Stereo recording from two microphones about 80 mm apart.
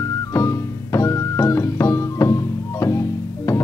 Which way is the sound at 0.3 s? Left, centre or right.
Left.